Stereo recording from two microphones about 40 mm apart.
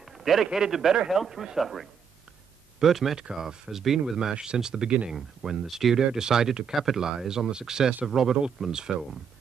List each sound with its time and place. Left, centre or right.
0.0 s a sound: centre
0.5 s speech: centre
4.3 s speech: centre